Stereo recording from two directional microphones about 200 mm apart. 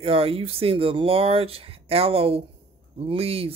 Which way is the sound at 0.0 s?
30° right (ahead or behind).